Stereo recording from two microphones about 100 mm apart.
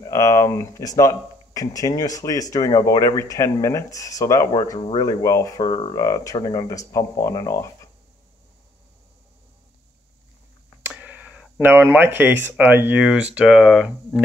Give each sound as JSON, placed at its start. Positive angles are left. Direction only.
{"t": 0.0, "sound": "speech", "side_deg": 30}
{"t": 10.8, "sound": "speech", "side_deg": -15}